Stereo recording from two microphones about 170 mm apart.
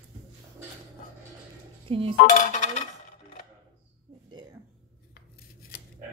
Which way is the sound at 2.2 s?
50° left (ahead or behind).